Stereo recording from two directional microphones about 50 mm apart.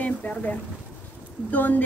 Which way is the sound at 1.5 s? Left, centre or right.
Left.